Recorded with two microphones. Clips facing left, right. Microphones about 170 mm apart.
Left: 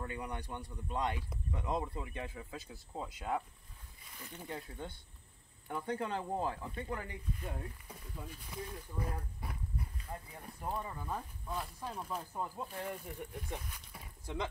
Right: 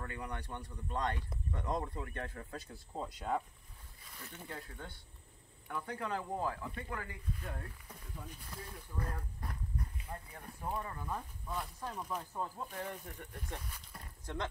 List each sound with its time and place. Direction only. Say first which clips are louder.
0.0 s speech: left 2 dB; 15° left (ahead or behind)
4.5 s speech: left 5 dB; 20° left (ahead or behind)
8.2 s speech: left 4 dB; 5° left (ahead or behind)